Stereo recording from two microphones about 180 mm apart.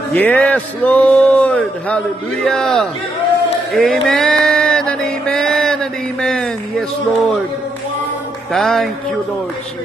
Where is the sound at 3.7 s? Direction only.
Centre (ahead or behind).